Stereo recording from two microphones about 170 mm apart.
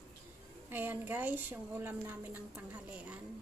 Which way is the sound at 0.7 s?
10° right (ahead or behind).